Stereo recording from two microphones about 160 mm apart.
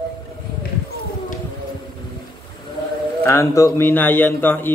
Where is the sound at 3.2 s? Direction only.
20° left (ahead or behind).